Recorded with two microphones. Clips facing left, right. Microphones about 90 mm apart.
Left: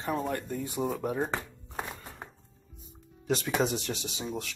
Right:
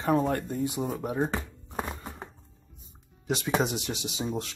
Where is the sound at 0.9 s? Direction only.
10° right (ahead or behind).